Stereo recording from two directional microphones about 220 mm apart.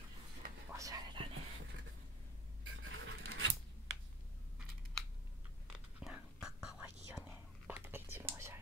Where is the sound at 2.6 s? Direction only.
60° right (ahead or behind).